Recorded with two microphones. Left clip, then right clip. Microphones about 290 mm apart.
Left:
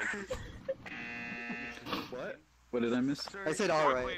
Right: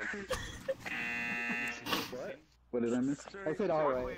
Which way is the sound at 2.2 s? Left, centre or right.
Left.